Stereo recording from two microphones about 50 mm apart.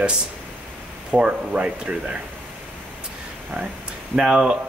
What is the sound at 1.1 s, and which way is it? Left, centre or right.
Speech, right.